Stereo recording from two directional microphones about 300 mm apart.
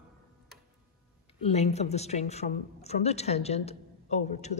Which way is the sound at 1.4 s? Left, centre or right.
Left.